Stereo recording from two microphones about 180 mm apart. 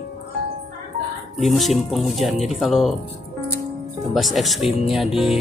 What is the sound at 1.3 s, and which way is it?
Speech, centre (ahead or behind).